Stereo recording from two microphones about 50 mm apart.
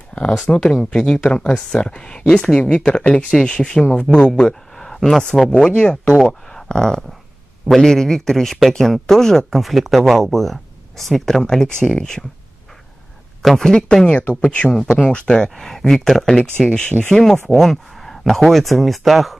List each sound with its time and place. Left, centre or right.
0.1 s a sound: left
0.5 s speech: centre
3.8 s speech: left
4.1 s speech: centre
4.4 s a sound: centre
5.4 s speech: centre
13.4 s a man's voice: centre
13.7 s speech: centre